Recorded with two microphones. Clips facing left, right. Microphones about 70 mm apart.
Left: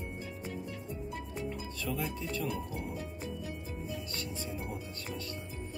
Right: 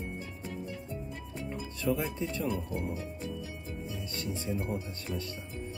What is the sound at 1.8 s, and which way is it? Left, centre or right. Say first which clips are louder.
Speech: right 6 dB; right.